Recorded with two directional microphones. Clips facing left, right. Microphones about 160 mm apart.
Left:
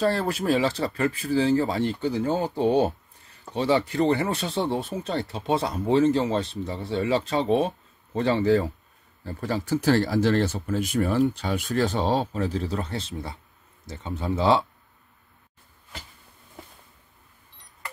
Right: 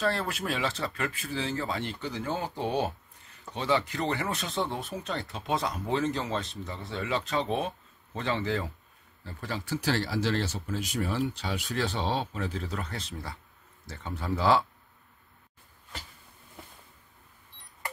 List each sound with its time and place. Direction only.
0.0 s speech: 35° left (ahead or behind)